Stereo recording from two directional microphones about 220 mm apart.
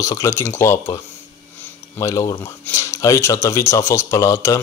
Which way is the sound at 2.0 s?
15° left (ahead or behind).